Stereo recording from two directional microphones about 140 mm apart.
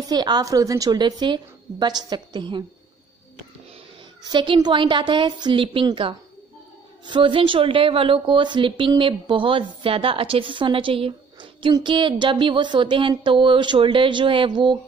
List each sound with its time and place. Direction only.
0.0 s a woman's voice: 30° right (ahead or behind)
4.2 s a woman's voice: 35° right (ahead or behind)